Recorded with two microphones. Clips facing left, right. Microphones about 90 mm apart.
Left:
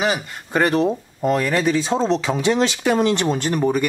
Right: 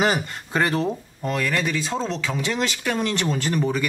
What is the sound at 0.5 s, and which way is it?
Speech, 20° left (ahead or behind).